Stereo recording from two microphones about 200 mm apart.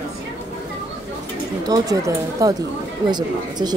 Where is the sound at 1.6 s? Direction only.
20° right (ahead or behind).